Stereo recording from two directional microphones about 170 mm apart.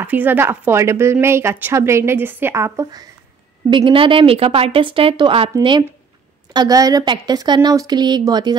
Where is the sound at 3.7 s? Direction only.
30° right (ahead or behind).